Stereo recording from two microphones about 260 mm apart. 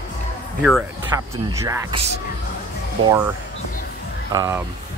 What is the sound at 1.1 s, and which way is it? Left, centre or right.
Speech, centre.